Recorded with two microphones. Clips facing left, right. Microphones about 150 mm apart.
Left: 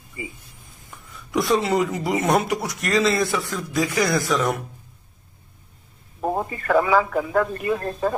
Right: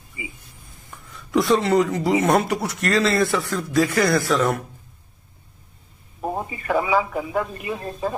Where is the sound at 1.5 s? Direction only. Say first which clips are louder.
Right 2 dB; 5° left (ahead or behind).